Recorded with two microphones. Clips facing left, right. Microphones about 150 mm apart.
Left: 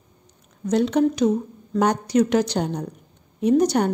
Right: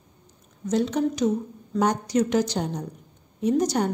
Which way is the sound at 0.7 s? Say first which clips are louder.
Left 4 dB; 65° left (ahead or behind).